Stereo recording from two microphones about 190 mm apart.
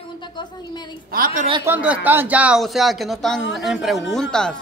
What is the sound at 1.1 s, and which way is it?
Speech, 45° right (ahead or behind).